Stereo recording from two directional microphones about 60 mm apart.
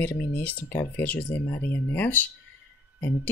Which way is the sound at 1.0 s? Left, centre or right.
Left.